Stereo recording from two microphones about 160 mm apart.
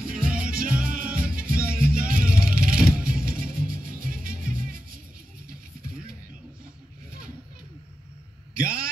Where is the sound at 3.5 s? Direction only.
60° right (ahead or behind).